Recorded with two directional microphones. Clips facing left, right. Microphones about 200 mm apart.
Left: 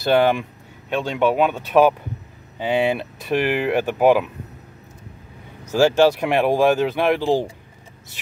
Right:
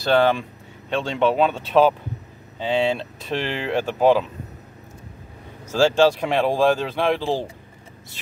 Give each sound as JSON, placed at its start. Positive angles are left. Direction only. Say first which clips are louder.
{"t": 0.1, "sound": "speech", "louder": "left 1 dB", "side_deg": 10}
{"t": 5.7, "sound": "speech", "louder": "left 2 dB", "side_deg": 15}